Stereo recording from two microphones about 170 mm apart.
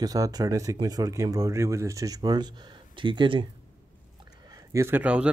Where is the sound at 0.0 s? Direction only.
20° right (ahead or behind).